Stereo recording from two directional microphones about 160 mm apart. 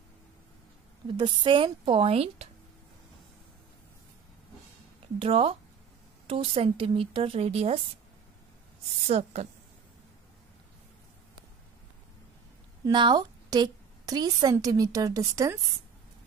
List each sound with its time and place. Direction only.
1.1 s speech: 30° right (ahead or behind)
5.2 s speech: 35° right (ahead or behind)
9.0 s a woman's voice: 40° right (ahead or behind)
12.8 s a woman's voice: 30° right (ahead or behind)